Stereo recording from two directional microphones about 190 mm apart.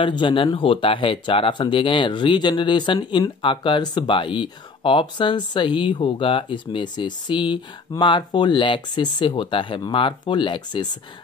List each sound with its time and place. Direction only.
0.0 s speech: 25° left (ahead or behind)